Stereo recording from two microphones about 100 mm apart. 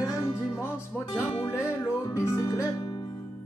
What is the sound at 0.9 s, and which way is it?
Music, 10° left (ahead or behind).